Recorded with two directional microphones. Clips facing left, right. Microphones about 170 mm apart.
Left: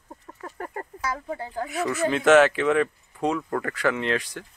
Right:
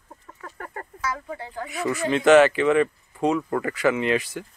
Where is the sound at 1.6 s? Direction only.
Centre (ahead or behind).